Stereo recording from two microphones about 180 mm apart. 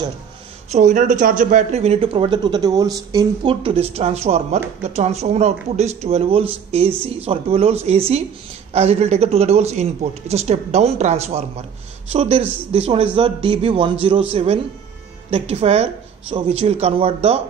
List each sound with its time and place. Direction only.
0.7 s speech: 40° right (ahead or behind)